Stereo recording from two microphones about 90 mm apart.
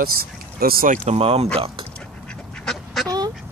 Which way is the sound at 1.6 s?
90° right.